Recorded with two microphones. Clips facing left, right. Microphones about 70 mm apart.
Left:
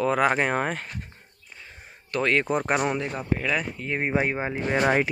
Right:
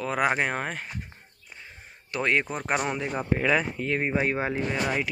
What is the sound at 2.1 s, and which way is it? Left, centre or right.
Speech, centre.